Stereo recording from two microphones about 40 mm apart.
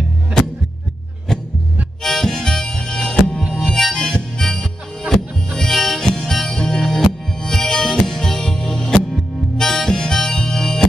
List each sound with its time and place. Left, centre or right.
2.0 s music: centre
9.6 s harmonica: centre